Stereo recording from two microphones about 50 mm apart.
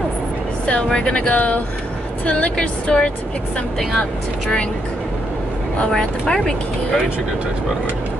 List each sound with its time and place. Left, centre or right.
0.8 s speech: centre
1.3 s speech: left
5.9 s speech: centre